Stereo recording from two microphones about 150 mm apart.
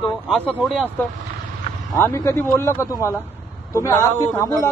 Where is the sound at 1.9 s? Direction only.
20° left (ahead or behind).